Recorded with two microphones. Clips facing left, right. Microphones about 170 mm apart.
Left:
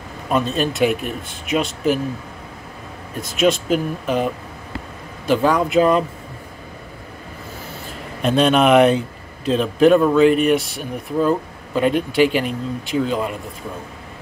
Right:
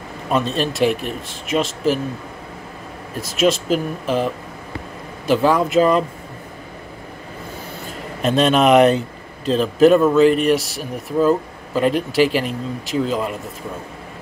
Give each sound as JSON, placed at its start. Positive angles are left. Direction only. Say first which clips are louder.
{"t": 0.3, "sound": "speech", "louder": "even", "side_deg": 0}
{"t": 3.2, "sound": "speech", "louder": "even", "side_deg": 0}
{"t": 5.3, "sound": "speech", "louder": "right 1 dB", "side_deg": -5}
{"t": 8.2, "sound": "speech", "louder": "even", "side_deg": 0}